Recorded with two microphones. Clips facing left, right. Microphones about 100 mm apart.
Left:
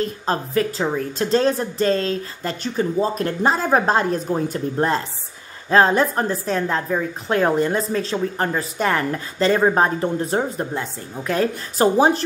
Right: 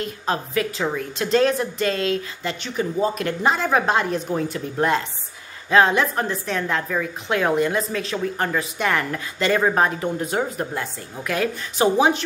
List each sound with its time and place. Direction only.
0.0 s a woman's voice: 35° left (ahead or behind)